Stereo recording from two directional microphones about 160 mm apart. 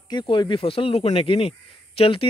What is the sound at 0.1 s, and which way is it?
Speech, 30° left (ahead or behind).